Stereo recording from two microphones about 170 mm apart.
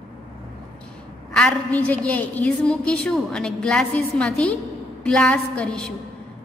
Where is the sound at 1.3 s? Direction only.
5° left (ahead or behind).